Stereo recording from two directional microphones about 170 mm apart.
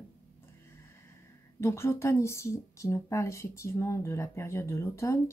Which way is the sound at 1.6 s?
15° left (ahead or behind).